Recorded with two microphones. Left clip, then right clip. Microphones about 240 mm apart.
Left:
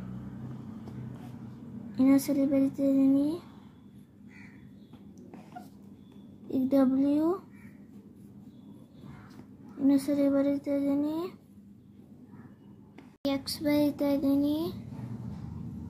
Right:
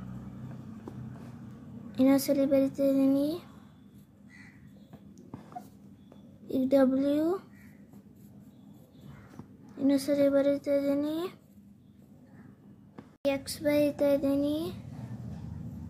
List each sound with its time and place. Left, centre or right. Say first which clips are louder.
2.0 s speech: right 1 dB; centre
6.5 s speech: right 2 dB; centre
9.8 s speech: right 1 dB; centre
13.6 s speech: right 1 dB; centre
14.4 s speech: left 1 dB; right